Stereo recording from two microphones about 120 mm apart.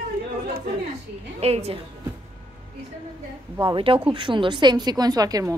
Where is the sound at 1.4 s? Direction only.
55° right (ahead or behind).